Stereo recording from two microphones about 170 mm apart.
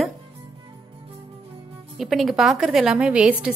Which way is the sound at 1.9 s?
Centre (ahead or behind).